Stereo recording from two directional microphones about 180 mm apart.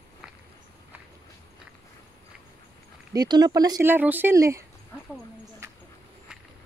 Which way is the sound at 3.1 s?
20° right (ahead or behind).